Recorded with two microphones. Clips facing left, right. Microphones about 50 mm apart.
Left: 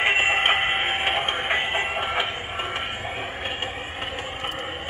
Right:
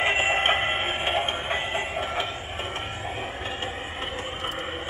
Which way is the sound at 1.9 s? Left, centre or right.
Left.